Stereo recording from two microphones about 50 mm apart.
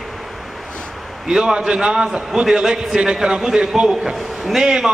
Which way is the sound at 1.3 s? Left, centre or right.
Centre.